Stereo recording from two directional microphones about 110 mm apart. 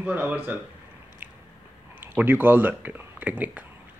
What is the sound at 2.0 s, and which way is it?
Speech, 20° right (ahead or behind).